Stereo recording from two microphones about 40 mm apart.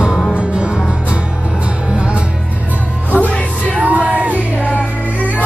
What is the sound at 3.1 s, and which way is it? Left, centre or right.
Music, left.